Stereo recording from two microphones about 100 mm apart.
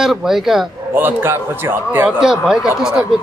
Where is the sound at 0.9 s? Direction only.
20° right (ahead or behind).